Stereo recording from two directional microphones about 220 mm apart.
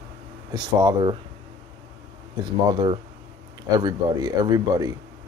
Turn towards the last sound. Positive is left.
turn(degrees=-15)  # may be behind; listen again after turning